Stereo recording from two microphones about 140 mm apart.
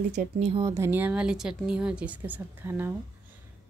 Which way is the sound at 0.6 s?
20° right (ahead or behind).